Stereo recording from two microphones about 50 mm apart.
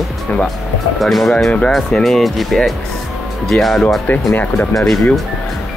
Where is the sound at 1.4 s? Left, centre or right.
Centre.